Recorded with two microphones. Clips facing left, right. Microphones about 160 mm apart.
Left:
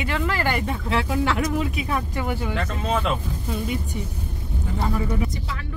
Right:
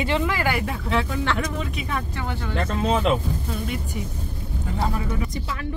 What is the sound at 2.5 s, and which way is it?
Speech, 35° right (ahead or behind).